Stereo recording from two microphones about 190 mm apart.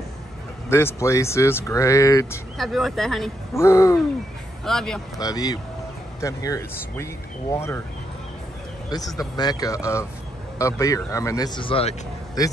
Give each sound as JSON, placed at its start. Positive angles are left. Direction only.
{"t": 0.7, "sound": "speech", "side_deg": 15}
{"t": 2.5, "sound": "speech", "side_deg": 0}
{"t": 3.5, "sound": "speech", "side_deg": 15}
{"t": 4.6, "sound": "speech", "side_deg": 5}
{"t": 5.2, "sound": "speech", "side_deg": 20}
{"t": 9.4, "sound": "speech", "side_deg": 20}